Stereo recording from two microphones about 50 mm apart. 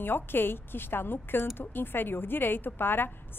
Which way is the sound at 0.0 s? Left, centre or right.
Left.